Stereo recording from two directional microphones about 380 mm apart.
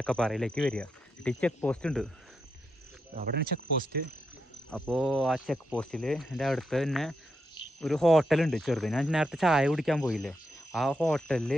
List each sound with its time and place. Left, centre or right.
0.0 s speech: centre
3.2 s speech: right
4.6 s speech: centre